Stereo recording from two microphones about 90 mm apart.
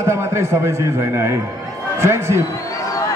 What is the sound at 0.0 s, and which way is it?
A man's voice, 30° right (ahead or behind).